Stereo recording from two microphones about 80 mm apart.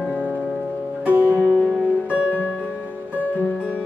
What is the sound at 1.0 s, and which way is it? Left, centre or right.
Music, right.